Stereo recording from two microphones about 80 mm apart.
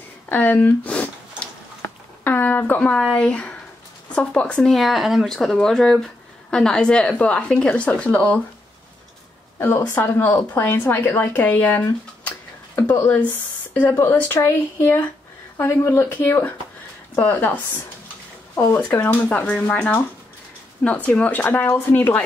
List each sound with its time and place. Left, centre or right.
0.3 s speech: left
2.2 s a sound: left
2.9 s speech: centre
9.6 s speech: left
12.3 s a sound: left
13.7 s speech: left
18.7 s speech: left
21.6 s speech: left
21.9 s speech: left